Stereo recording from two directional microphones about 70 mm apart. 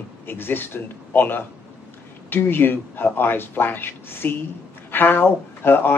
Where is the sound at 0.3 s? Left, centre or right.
Left.